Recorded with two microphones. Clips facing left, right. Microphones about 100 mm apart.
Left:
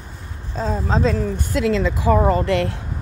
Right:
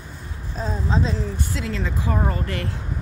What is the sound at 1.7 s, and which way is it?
Speech, 90° left.